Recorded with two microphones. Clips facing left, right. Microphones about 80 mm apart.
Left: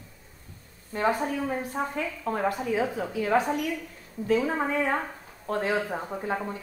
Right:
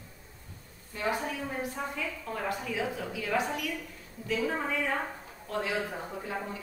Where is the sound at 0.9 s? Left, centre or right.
Left.